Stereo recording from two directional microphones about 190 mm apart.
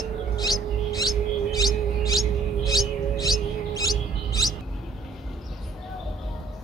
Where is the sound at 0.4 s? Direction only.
20° left (ahead or behind).